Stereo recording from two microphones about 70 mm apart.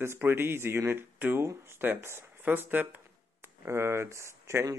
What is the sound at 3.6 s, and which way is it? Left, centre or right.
Speech, right.